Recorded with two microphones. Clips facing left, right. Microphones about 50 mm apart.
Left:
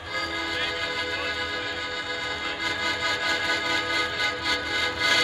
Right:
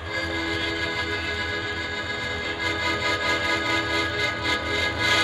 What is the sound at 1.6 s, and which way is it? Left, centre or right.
Music, right.